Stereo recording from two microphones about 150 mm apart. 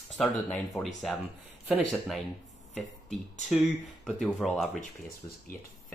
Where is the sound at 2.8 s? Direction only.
Centre (ahead or behind).